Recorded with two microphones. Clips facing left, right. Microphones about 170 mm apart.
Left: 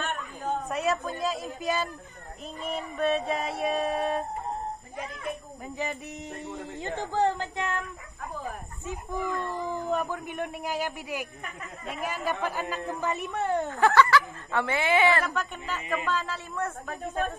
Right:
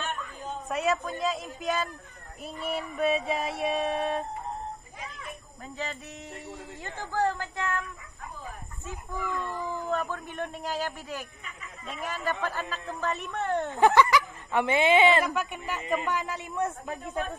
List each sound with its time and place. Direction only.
0.4 s a sound: 55° left (ahead or behind)
0.7 s music: centre (ahead or behind)
5.8 s a man's voice: 15° left (ahead or behind)
9.2 s speech: 40° left (ahead or behind)
9.7 s a man's voice: 15° left (ahead or behind)
13.7 s a woman's voice: 15° right (ahead or behind)